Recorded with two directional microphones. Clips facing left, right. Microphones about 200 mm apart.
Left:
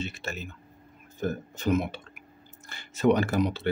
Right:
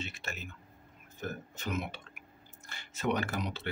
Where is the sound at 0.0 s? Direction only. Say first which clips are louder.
Left 7 dB; 30° left (ahead or behind).